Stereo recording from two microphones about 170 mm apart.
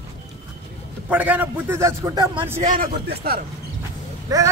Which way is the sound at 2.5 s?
50° right (ahead or behind).